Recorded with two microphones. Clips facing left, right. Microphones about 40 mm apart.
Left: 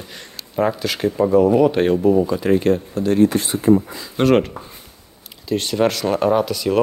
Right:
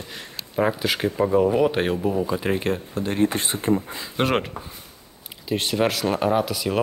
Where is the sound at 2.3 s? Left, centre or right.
Centre.